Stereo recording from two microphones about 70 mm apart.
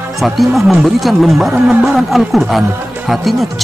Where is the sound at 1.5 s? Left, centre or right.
Centre.